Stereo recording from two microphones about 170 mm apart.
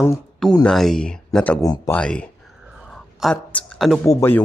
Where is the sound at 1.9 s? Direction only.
5° left (ahead or behind).